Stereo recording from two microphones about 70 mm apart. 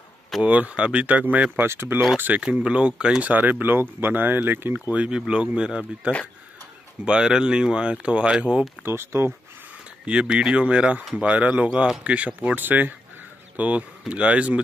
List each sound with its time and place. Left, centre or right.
0.4 s speech: right
1.7 s speech: right
2.1 s speech: right
4.9 s speech: centre
8.8 s speech: right
10.0 s speech: centre